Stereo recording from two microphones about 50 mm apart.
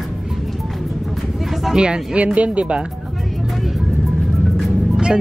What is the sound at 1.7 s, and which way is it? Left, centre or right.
Speech, centre.